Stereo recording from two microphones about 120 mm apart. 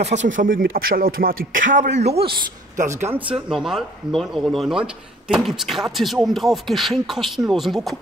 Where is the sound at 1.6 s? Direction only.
90° right.